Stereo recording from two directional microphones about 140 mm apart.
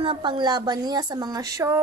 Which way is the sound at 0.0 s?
35° right (ahead or behind).